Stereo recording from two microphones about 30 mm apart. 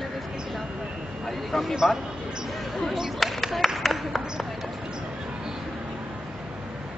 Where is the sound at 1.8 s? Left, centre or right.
Centre.